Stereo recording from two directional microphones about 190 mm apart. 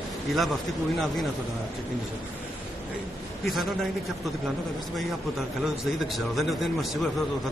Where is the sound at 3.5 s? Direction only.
Centre (ahead or behind).